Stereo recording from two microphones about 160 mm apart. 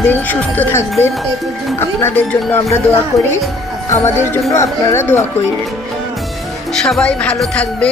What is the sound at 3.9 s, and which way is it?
Speech, 15° left (ahead or behind).